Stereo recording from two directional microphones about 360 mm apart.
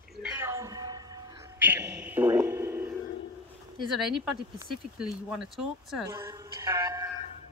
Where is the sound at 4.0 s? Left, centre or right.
Centre.